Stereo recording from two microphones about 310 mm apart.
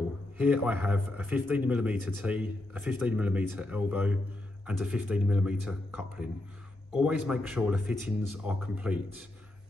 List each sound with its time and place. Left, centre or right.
0.4 s speech: centre